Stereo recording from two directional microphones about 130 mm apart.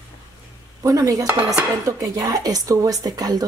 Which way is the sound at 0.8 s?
25° right (ahead or behind).